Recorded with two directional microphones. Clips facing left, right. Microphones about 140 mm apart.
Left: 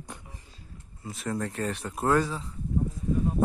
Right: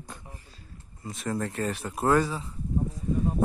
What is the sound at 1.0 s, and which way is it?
Speech, centre (ahead or behind).